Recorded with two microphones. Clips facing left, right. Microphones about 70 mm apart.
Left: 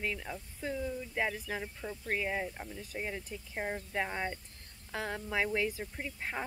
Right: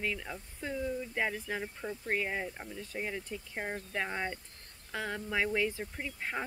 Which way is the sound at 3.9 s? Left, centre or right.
Centre.